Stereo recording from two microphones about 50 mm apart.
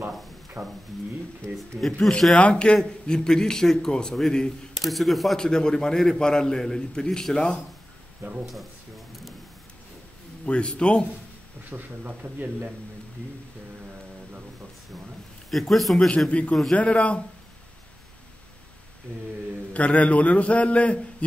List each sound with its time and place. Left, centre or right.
0.6 s speech: right
1.9 s a man's voice: centre
2.3 s a man's voice: left
4.7 s speech: centre
5.4 s a man's voice: centre
8.5 s a sound: centre
10.4 s a man's voice: left
11.7 s a man's voice: right
15.5 s speech: centre
16.3 s a man's voice: left
19.7 s a man's voice: left